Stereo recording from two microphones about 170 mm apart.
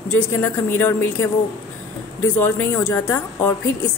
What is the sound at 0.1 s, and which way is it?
A woman's voice, 10° left (ahead or behind).